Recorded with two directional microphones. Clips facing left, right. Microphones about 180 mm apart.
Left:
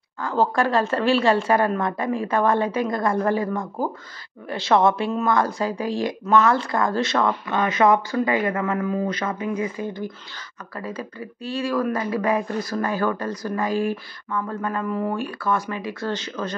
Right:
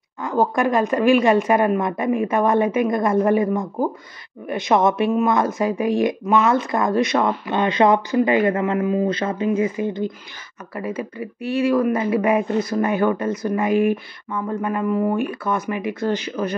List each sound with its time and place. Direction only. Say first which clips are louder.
0.2 s speech: right 2 dB; 20° right (ahead or behind)